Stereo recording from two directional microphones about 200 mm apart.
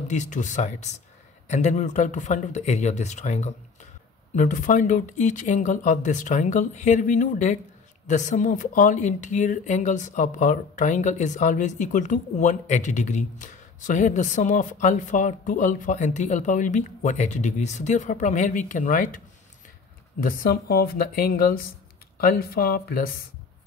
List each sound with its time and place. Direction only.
0.1 s speech: 35° left (ahead or behind)
20.2 s speech: 45° left (ahead or behind)